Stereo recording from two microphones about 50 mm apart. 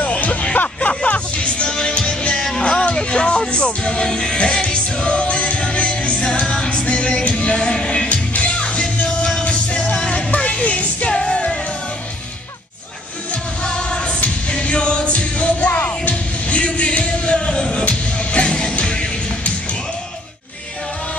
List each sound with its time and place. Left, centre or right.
0.0 s music: left
13.3 s music: centre
15.7 s music: left
16.1 s music: left